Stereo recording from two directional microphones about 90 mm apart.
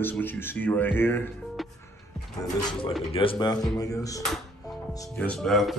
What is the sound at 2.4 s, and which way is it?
Speech, 45° left (ahead or behind).